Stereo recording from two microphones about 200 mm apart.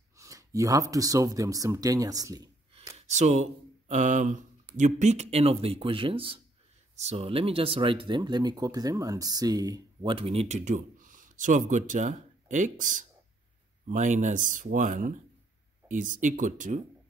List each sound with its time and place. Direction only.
0.2 s speech: 15° right (ahead or behind)
3.1 s speech: 35° right (ahead or behind)